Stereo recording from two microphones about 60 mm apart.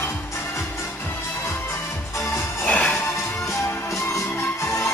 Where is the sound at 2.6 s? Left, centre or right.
Left.